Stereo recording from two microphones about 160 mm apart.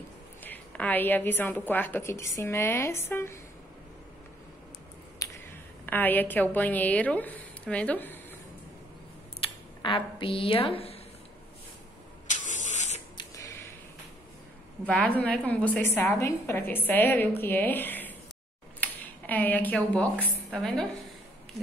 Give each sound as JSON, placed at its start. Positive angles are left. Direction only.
{"t": 0.4, "sound": "a woman's voice", "side_deg": 10}
{"t": 5.2, "sound": "finger snapping", "side_deg": 20}
{"t": 5.9, "sound": "a woman's voice", "side_deg": 10}
{"t": 9.8, "sound": "a woman's voice", "side_deg": 30}
{"t": 12.3, "sound": "spray", "side_deg": 50}
{"t": 13.2, "sound": "a sound", "side_deg": 20}
{"t": 14.9, "sound": "a woman's voice", "side_deg": 10}